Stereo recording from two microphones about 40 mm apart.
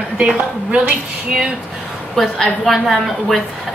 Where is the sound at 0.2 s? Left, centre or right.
Right.